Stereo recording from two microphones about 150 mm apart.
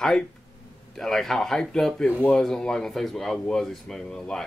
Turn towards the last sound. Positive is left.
turn(degrees=5)  # may be behind; listen again after turning